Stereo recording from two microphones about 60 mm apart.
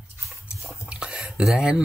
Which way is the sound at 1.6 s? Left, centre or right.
Centre.